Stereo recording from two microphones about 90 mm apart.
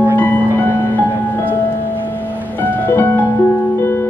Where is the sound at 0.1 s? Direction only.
20° left (ahead or behind).